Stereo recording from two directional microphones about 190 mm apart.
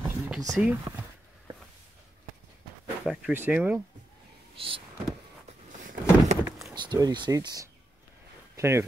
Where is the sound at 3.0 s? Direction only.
5° right (ahead or behind).